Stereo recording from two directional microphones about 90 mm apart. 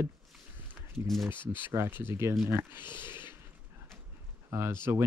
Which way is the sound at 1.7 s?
25° right (ahead or behind).